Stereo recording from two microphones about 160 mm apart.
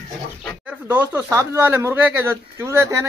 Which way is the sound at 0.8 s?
10° right (ahead or behind).